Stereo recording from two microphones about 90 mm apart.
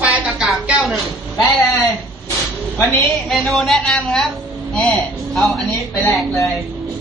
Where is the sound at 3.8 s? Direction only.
10° left (ahead or behind).